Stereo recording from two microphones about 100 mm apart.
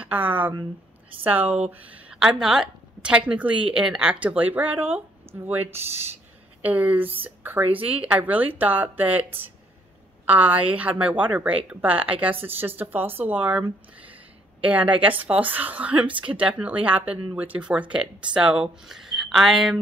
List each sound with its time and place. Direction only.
0.0 s a woman's voice: 15° right (ahead or behind)
6.6 s a woman's voice: 15° right (ahead or behind)